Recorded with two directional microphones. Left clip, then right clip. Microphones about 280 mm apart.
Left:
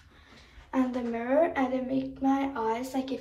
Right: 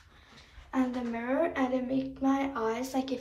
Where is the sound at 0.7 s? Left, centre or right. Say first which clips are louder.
Left 2 dB; centre.